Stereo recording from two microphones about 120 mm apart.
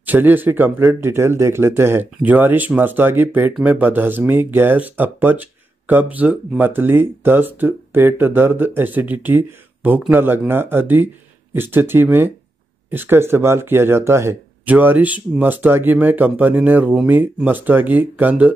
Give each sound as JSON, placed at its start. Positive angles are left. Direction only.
{"t": 0.0, "sound": "speech", "side_deg": -15}